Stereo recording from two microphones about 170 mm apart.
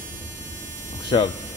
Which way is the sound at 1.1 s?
30° left (ahead or behind).